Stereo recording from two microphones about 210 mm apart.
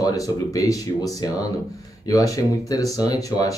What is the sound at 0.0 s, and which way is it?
Speech, 15° left (ahead or behind).